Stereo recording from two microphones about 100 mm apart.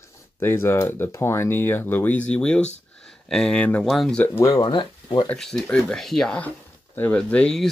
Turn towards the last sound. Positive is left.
turn(degrees=15)  # may be behind; listen again after turning